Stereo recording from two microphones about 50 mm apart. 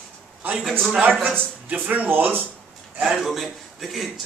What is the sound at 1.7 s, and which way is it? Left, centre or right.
Speech, right.